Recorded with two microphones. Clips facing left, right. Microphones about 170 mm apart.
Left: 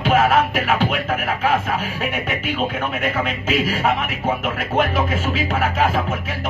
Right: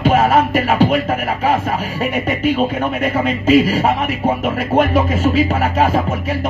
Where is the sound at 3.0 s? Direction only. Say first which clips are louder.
Right 6 dB; 40° right (ahead or behind).